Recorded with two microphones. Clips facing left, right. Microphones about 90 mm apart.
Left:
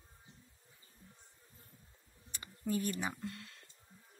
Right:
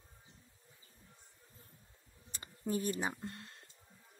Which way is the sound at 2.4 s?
30° right (ahead or behind).